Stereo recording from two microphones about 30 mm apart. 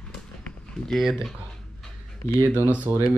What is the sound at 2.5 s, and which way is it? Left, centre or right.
Speech, right.